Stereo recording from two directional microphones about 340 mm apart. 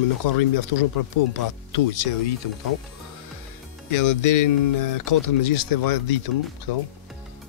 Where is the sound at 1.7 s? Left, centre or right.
Left.